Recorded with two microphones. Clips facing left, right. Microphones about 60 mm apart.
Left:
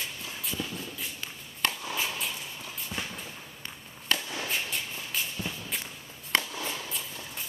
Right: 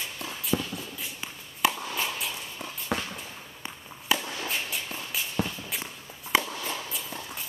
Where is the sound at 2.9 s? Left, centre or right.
Right.